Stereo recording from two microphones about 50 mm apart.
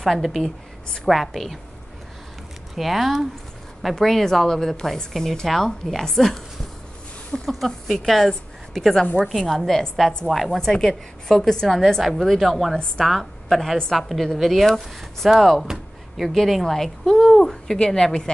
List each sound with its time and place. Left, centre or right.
0.0 s a woman's voice: centre
2.7 s a woman's voice: centre
7.4 s a woman's voice: centre
10.6 s a woman's voice: centre